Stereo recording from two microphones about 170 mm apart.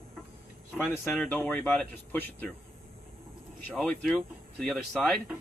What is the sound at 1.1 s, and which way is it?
Speech, 10° left (ahead or behind).